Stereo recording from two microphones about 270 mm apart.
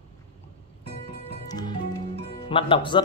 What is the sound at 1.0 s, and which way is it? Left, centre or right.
Music, centre.